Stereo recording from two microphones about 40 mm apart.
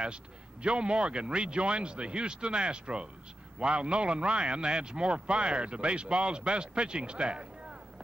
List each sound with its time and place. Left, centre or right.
0.0 s speech: right